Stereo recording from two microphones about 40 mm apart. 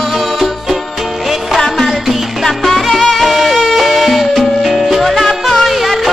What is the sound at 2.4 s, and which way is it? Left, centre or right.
Music, centre.